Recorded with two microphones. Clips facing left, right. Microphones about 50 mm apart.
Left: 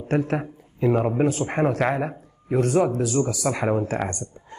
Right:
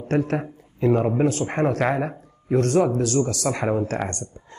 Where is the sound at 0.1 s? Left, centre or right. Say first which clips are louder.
Right 1 dB; centre.